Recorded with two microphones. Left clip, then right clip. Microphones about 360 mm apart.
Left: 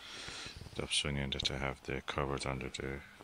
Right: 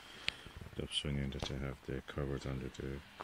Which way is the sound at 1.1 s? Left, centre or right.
Left.